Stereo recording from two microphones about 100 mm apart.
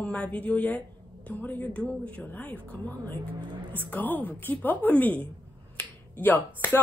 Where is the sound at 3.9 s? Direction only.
20° left (ahead or behind).